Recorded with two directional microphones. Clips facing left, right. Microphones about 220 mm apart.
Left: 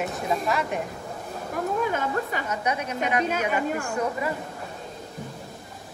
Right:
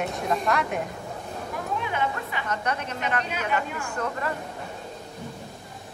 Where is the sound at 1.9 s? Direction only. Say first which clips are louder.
Left 2 dB; 45° left (ahead or behind).